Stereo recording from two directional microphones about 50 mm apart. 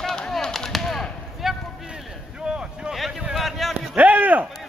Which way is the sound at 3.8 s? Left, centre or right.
Right.